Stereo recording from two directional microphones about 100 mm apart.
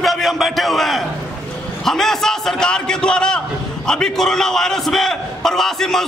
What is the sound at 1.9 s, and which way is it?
A man's voice, 5° left (ahead or behind).